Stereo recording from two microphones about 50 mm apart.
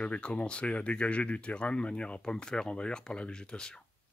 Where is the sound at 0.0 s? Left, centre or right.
Left.